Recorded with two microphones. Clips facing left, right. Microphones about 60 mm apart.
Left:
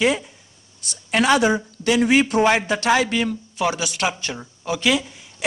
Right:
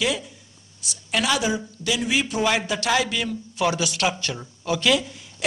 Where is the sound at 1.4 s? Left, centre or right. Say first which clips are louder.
Left 6 dB; left.